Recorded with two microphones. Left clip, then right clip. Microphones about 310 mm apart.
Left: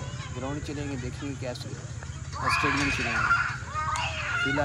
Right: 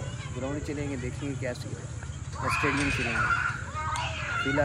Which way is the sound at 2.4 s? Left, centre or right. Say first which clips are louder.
Left 2 dB; left.